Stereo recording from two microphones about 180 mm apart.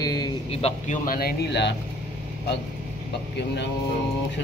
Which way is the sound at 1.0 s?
55° left (ahead or behind).